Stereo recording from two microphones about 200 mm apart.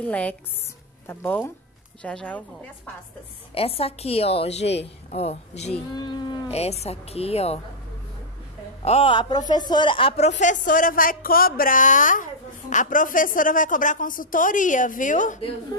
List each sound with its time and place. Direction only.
0.0 s a woman's voice: 5° left (ahead or behind)
3.5 s a woman's voice: 30° left (ahead or behind)
5.9 s speech: 20° left (ahead or behind)
8.8 s speech: 30° left (ahead or behind)